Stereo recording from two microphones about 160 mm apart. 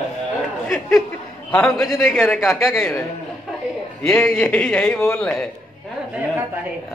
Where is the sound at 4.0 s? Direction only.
Centre (ahead or behind).